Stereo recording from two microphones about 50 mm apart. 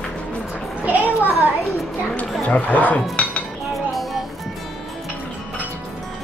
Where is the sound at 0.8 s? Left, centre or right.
Right.